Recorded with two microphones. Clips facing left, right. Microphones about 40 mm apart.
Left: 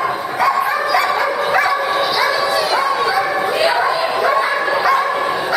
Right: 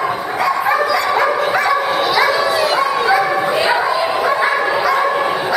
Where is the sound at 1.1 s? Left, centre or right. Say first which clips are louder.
Right 3 dB; centre.